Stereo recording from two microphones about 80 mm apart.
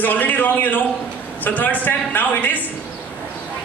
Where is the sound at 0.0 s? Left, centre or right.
Left.